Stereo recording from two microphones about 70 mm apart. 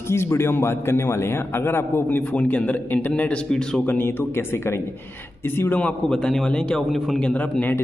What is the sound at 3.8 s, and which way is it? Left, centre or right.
Speech, left.